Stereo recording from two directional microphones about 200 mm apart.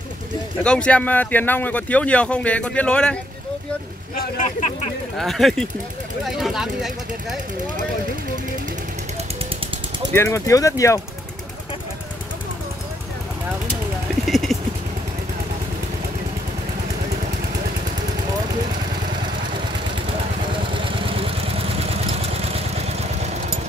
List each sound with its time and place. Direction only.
0.7 s speech: 5° left (ahead or behind)
4.1 s speech: 40° left (ahead or behind)
5.1 s speech: centre (ahead or behind)
10.1 s speech: 15° left (ahead or behind)
14.2 s a sound: centre (ahead or behind)
20.8 s vehicle: 25° right (ahead or behind)